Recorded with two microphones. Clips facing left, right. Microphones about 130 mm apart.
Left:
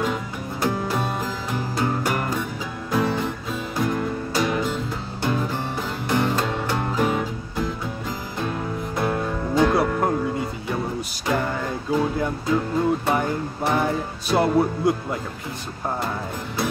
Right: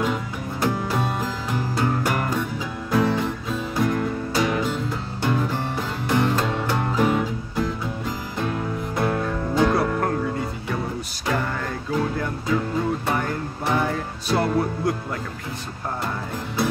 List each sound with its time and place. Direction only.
0.0 s music: centre (ahead or behind)
9.9 s music: 15° left (ahead or behind)
11.9 s music: 10° left (ahead or behind)
13.1 s music: 15° left (ahead or behind)
14.3 s music: 20° left (ahead or behind)